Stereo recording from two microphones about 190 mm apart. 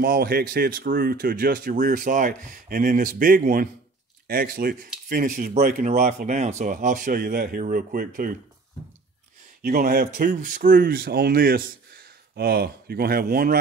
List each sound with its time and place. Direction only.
0.0 s speech: 50° right (ahead or behind)
9.6 s speech: 50° right (ahead or behind)